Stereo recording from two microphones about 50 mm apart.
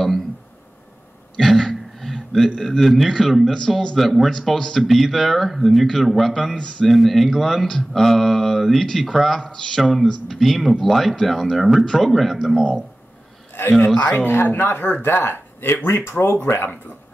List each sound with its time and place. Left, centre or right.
1.4 s a sound: centre
2.6 s speech: centre
4.3 s speech: centre
6.5 s speech: centre
6.9 s speech: centre
13.7 s speech: centre
14.1 s speech: left